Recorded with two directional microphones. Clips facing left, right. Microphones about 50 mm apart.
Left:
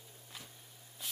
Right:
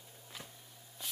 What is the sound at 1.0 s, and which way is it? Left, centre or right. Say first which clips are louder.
Spray: even; centre.